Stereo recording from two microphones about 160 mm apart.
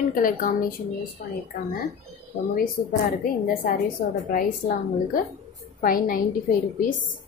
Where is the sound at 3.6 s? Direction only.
65° left (ahead or behind).